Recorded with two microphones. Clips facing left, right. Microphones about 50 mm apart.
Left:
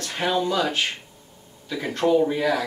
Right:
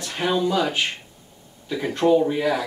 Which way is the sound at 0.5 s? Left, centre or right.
Centre.